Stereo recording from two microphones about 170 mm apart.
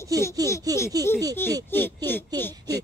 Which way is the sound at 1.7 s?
10° left (ahead or behind).